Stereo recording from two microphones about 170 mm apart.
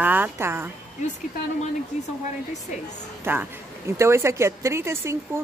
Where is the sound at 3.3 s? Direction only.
15° right (ahead or behind).